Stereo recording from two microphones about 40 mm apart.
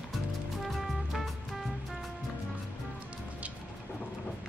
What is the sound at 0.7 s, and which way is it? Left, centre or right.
Music, centre.